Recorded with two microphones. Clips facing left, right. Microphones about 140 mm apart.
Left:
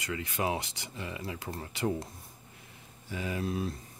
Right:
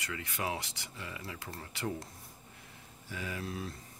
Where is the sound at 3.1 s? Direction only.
20° left (ahead or behind).